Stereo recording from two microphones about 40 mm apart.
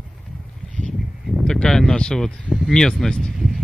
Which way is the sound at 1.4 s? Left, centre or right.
Centre.